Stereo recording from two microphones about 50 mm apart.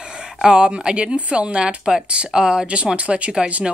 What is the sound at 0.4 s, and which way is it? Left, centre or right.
Speech, centre.